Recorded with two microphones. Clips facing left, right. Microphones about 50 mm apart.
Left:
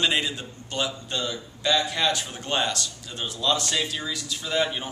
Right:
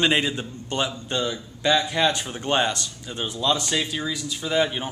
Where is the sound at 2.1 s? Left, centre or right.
Right.